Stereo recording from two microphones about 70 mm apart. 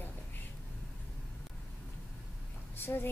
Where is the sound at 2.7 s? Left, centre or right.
Left.